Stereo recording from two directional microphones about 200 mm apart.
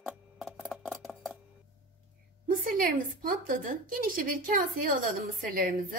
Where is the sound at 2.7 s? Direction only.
45° right (ahead or behind).